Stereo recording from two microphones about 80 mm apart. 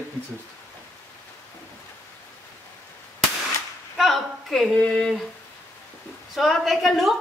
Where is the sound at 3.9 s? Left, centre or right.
Centre.